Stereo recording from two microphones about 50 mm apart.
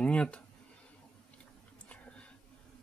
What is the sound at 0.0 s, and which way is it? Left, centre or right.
Speech, left.